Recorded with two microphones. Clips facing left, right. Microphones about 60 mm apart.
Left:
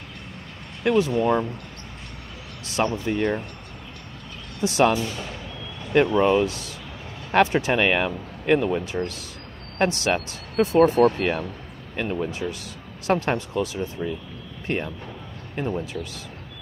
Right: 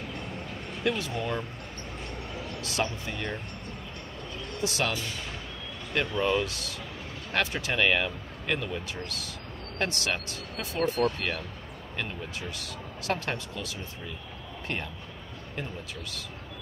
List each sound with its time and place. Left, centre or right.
0.8 s speech: left
3.1 s speech: left
4.6 s speech: left